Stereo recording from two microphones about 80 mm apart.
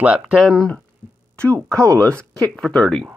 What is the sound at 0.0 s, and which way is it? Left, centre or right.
Speech, centre.